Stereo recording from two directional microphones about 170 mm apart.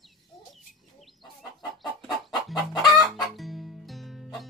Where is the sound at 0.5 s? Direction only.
Centre (ahead or behind).